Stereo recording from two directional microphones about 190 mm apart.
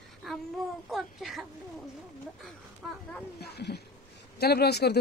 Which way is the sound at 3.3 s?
60° left (ahead or behind).